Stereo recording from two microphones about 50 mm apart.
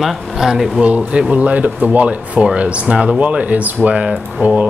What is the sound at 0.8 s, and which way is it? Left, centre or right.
Speech, right.